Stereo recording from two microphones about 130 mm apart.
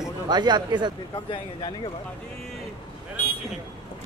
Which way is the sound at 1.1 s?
40° left (ahead or behind).